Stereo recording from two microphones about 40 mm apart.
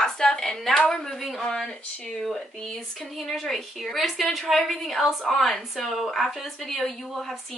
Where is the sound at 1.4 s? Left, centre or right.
Left.